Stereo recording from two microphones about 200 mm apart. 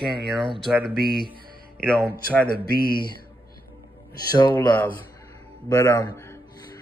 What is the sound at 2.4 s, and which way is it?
Speech, 45° left (ahead or behind).